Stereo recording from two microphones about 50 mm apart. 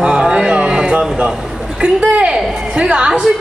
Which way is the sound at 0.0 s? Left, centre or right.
Centre.